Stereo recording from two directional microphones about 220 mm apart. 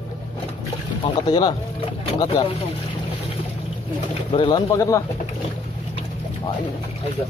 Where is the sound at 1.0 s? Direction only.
20° left (ahead or behind).